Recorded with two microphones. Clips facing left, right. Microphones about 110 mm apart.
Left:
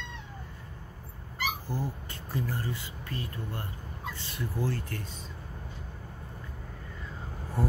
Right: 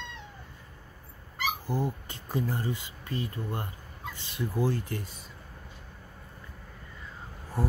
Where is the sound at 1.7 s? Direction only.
15° right (ahead or behind).